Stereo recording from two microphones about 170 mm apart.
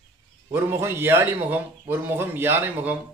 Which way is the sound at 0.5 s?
15° right (ahead or behind).